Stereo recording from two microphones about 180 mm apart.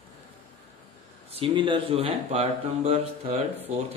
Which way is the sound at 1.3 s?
30° right (ahead or behind).